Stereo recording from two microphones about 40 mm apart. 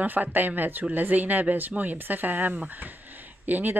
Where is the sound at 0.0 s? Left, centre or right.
Right.